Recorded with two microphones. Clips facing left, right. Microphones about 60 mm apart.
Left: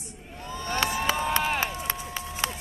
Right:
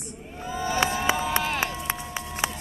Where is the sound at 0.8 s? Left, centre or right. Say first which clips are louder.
Right 2 dB; right.